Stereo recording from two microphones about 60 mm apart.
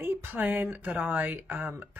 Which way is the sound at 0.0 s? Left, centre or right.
Right.